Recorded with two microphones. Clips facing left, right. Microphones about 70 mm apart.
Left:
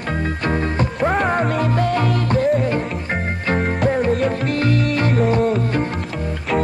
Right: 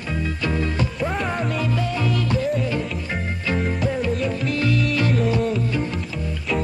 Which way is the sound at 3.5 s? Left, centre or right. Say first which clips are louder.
Left 5 dB; left.